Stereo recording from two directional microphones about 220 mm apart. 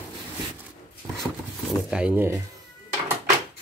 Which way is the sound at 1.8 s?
5° right (ahead or behind).